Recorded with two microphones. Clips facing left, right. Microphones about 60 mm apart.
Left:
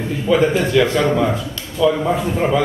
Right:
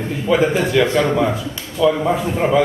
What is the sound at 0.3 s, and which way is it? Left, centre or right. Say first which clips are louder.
A man's voice: left 1 dB; centre.